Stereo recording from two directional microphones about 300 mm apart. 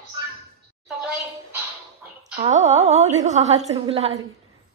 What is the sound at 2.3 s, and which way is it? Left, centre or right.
A woman's voice, right.